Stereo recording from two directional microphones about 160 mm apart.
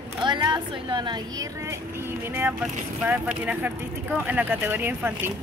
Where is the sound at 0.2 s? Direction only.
30° right (ahead or behind).